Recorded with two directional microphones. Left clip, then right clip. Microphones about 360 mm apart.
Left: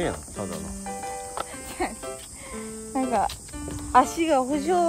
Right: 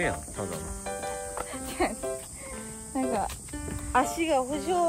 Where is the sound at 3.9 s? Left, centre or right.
Left.